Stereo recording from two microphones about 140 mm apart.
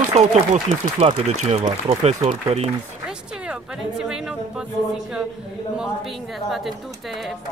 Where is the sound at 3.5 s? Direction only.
5° right (ahead or behind).